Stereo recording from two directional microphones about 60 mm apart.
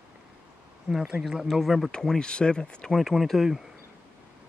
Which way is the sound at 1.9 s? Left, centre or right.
Centre.